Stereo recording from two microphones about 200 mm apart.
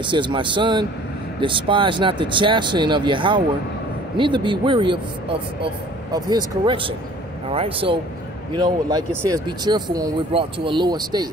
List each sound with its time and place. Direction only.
0.0 s speech: 25° right (ahead or behind)
6.1 s speech: 20° right (ahead or behind)